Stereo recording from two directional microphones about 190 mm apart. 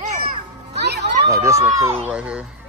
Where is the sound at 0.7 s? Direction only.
60° right (ahead or behind).